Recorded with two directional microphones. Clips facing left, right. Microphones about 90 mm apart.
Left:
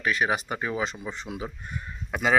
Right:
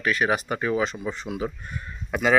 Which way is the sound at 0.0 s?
20° left (ahead or behind).